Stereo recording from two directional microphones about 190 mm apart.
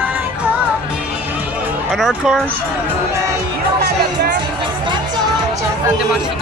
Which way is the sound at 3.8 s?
55° right (ahead or behind).